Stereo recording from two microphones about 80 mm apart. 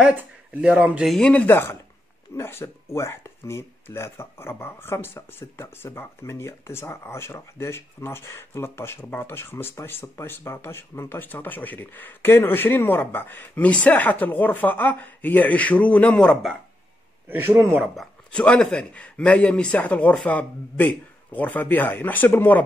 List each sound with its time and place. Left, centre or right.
0.1 s speech: centre
1.2 s speech: centre
1.5 s speech: left; by 16.3 s centre
17.3 s speech: right
17.9 s speech: centre